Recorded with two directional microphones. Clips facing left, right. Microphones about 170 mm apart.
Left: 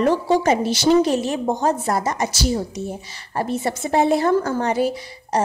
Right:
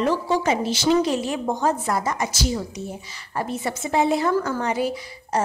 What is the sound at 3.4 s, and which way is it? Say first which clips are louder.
A woman's voice: left 4 dB; 35° left (ahead or behind).